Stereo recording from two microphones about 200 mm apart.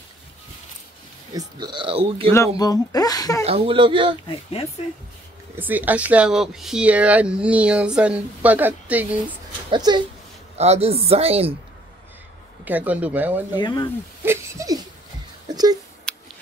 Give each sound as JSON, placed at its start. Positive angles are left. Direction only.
{"t": 1.3, "sound": "speech", "side_deg": -20}
{"t": 2.3, "sound": "speech", "side_deg": 15}
{"t": 3.4, "sound": "speech", "side_deg": -30}
{"t": 4.3, "sound": "speech", "side_deg": 30}
{"t": 5.6, "sound": "speech", "side_deg": -10}
{"t": 9.7, "sound": "speech", "side_deg": -20}
{"t": 12.6, "sound": "speech", "side_deg": -10}
{"t": 13.6, "sound": "speech", "side_deg": 20}
{"t": 14.2, "sound": "a sound", "side_deg": -15}
{"t": 16.1, "sound": "a sound", "side_deg": 5}